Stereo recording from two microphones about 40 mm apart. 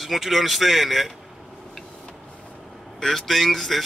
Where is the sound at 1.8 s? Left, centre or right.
Centre.